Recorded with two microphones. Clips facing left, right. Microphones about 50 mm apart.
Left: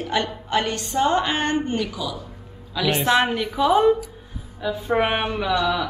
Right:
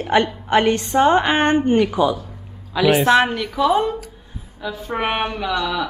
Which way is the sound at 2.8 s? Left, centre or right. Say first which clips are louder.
Right 5 dB; centre.